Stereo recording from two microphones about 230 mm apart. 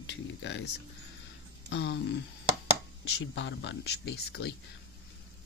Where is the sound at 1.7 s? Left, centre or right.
Left.